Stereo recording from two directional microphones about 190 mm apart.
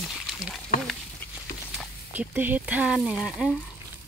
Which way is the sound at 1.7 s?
10° right (ahead or behind).